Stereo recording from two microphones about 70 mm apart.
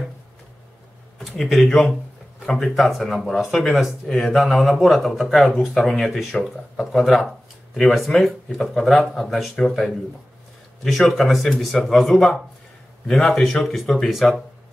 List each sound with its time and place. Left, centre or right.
1.2 s speech: centre